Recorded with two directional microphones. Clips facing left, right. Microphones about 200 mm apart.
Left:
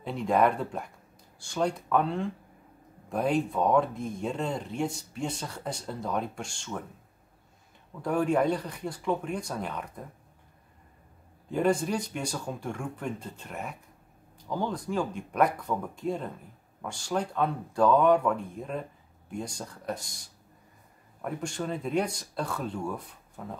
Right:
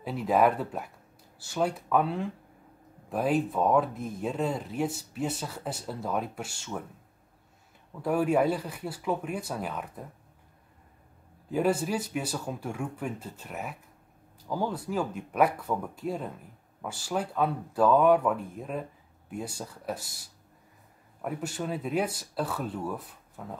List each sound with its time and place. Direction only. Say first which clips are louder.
0.0 s speech: right 1 dB; 5° right (ahead or behind)
8.0 s speech: right 1 dB; 5° right (ahead or behind)
11.5 s speech: even; 5° right (ahead or behind)